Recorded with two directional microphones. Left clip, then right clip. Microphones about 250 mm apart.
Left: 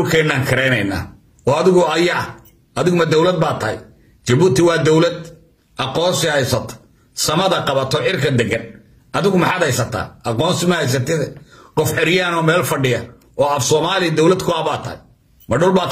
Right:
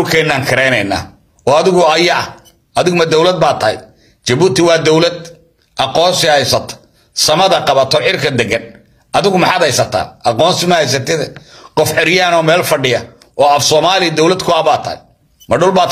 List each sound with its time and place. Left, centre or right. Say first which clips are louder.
0.1 s a man's voice: right 5 dB; centre